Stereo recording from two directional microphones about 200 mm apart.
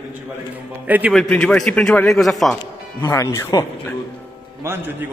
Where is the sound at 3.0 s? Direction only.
15° left (ahead or behind).